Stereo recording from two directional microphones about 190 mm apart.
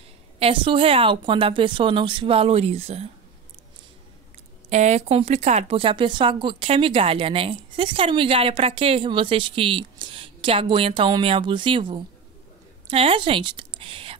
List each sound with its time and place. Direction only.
0.4 s speech: 30° right (ahead or behind)
4.6 s a woman's voice: 35° right (ahead or behind)